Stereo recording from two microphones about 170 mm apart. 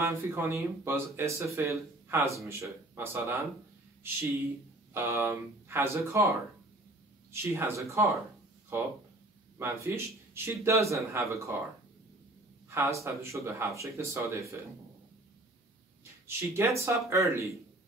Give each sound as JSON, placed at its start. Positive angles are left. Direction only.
{"t": 0.0, "sound": "speech", "side_deg": -15}
{"t": 4.9, "sound": "speech", "side_deg": -15}
{"t": 7.5, "sound": "speech", "side_deg": -15}
{"t": 12.6, "sound": "a sound", "side_deg": -15}
{"t": 13.0, "sound": "speech", "side_deg": -15}
{"t": 16.3, "sound": "speech", "side_deg": -15}